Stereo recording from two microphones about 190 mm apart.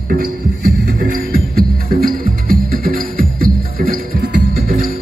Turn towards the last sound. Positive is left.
turn(degrees=-50)  # may be behind; listen again after turning